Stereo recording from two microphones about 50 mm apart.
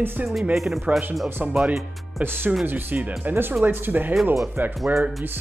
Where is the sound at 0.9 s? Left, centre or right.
Centre.